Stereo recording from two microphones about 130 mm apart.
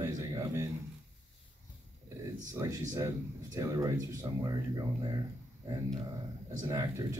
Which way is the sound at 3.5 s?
30° right (ahead or behind).